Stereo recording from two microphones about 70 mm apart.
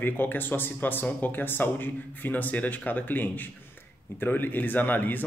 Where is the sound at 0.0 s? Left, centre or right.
Left.